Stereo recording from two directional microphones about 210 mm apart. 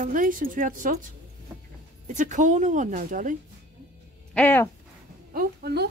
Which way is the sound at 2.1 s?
35° right (ahead or behind).